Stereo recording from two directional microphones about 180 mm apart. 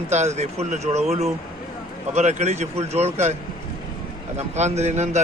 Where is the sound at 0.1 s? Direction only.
35° right (ahead or behind).